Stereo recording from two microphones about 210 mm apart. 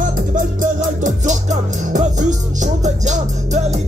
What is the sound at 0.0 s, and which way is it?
Music, 40° right (ahead or behind).